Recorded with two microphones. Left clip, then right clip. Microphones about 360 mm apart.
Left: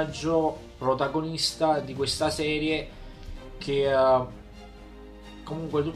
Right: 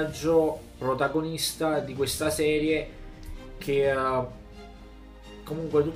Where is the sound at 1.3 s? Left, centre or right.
Centre.